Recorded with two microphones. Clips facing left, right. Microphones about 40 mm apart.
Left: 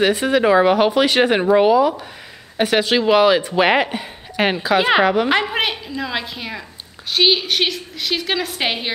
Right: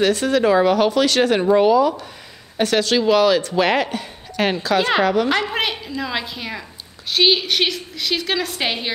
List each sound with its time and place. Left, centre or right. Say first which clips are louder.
0.0 s a woman's voice: left 1 dB; centre